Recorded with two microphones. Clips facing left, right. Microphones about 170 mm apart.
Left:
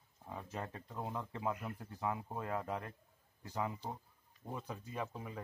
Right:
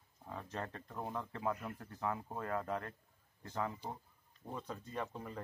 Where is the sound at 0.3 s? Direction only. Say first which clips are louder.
Right 1 dB; 10° left (ahead or behind).